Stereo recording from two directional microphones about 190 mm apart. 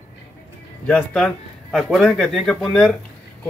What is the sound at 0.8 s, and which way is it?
A man's voice, 5° left (ahead or behind).